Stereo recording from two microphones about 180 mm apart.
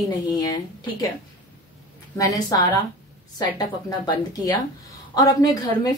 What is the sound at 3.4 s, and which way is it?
Speech, 20° left (ahead or behind).